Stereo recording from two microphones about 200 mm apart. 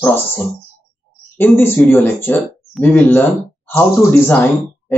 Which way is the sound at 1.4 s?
10° left (ahead or behind).